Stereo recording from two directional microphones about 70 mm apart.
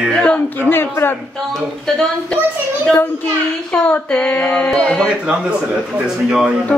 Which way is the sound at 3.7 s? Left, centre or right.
Centre.